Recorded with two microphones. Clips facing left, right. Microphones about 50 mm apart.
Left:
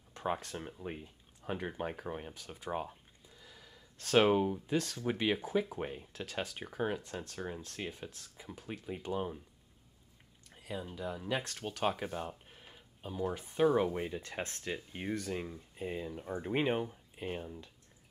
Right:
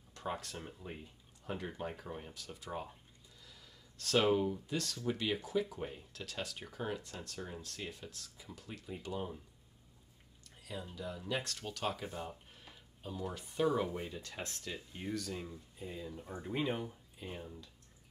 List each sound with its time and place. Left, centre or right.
0.1 s speech: left
10.5 s speech: left